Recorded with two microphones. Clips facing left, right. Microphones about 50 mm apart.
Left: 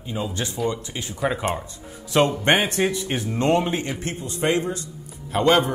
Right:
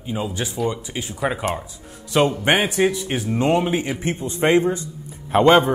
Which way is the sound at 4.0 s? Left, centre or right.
Right.